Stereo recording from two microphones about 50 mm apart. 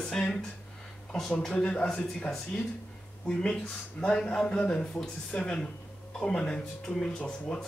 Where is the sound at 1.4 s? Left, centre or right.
Centre.